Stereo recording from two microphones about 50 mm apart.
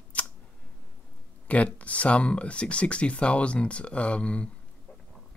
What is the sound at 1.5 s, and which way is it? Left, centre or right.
Speech, left.